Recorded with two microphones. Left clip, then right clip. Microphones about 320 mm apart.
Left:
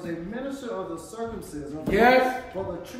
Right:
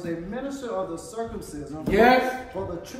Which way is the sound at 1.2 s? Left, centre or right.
Centre.